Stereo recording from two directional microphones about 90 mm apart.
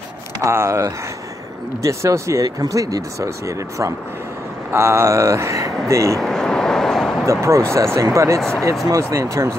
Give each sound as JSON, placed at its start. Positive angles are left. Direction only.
{"t": 0.4, "sound": "speech", "side_deg": -35}
{"t": 6.1, "sound": "vehicle", "side_deg": 5}
{"t": 7.2, "sound": "speech", "side_deg": -35}
{"t": 8.4, "sound": "speech", "side_deg": 5}
{"t": 8.8, "sound": "speech", "side_deg": -40}